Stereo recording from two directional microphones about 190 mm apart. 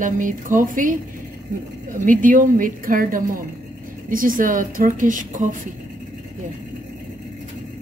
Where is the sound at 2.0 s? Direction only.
45° right (ahead or behind).